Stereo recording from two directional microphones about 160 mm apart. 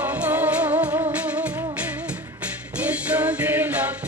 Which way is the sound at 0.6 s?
30° right (ahead or behind).